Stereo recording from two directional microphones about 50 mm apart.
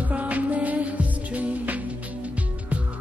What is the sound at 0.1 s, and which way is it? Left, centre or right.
Music, right.